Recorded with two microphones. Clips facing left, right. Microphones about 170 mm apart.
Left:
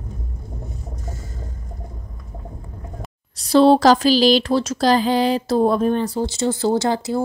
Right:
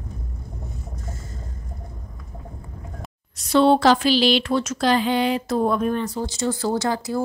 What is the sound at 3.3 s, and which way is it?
Speech, 35° left (ahead or behind).